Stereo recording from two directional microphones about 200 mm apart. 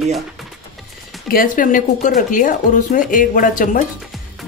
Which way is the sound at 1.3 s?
45° left (ahead or behind).